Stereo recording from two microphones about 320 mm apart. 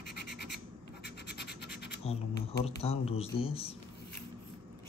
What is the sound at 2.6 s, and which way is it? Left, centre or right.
Speech, centre.